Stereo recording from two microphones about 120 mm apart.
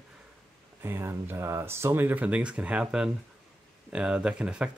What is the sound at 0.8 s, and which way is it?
Speech, 20° right (ahead or behind).